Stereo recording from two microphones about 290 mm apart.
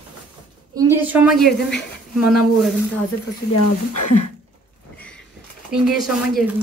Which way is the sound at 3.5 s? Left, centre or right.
Left.